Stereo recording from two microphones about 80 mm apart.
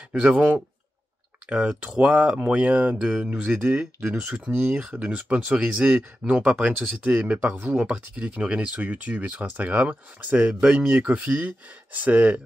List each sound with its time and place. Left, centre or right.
0.1 s speech: centre